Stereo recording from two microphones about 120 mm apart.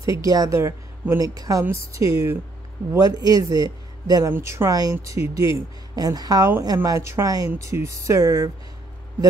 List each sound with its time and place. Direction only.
0.0 s a woman's voice: 30° right (ahead or behind)
4.3 s a woman's voice: 20° right (ahead or behind)